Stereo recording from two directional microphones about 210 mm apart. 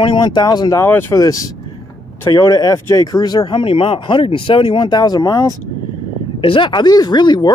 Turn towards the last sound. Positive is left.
turn(degrees=20)  # may be behind; listen again after turning